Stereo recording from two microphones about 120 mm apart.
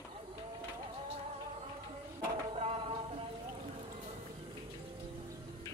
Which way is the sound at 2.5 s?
55° right (ahead or behind).